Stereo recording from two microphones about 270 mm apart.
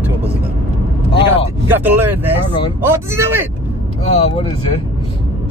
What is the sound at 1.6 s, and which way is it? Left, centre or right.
Speech, centre.